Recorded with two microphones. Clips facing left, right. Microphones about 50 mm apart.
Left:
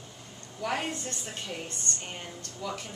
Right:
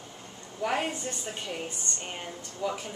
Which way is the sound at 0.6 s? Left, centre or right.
Centre.